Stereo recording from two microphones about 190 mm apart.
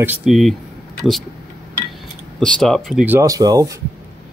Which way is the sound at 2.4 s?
5° left (ahead or behind).